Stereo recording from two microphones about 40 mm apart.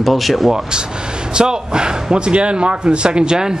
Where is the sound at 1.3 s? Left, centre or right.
Right.